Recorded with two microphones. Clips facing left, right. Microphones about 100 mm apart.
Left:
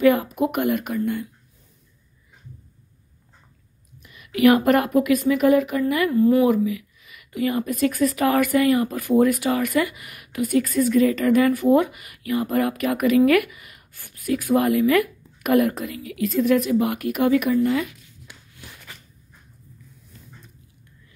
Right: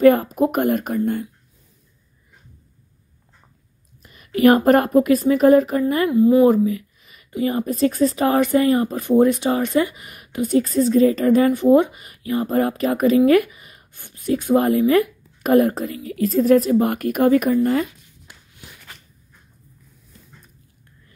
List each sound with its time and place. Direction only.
0.0 s a woman's voice: 45° right (ahead or behind)
4.0 s a woman's voice: 35° right (ahead or behind)
6.1 s speech: 20° right (ahead or behind)
6.4 s speech: 35° right (ahead or behind)
17.6 s a sound: 40° right (ahead or behind)